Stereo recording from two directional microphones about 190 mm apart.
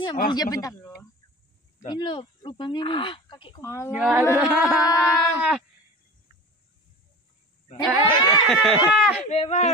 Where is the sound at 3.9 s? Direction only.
5° right (ahead or behind).